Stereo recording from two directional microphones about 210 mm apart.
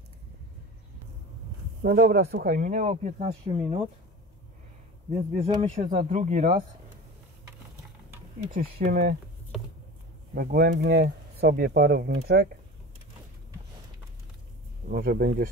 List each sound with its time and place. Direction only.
1.8 s speech: 45° right (ahead or behind); by 3.8 s 30° right (ahead or behind)
5.4 s speech: 25° right (ahead or behind)
5.8 s speech: 35° right (ahead or behind)
8.5 s speech: 45° right (ahead or behind)
9.5 s a sound: centre (ahead or behind)
10.3 s speech: 45° right (ahead or behind)
14.9 s speech: 45° right (ahead or behind)